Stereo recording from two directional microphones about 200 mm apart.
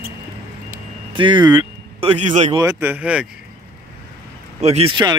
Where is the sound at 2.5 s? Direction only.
15° right (ahead or behind).